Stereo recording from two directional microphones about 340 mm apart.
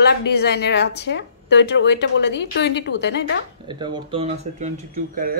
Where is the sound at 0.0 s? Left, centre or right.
Left.